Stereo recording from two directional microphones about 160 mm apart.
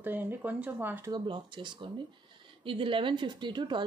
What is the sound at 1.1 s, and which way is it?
Speech, 30° right (ahead or behind).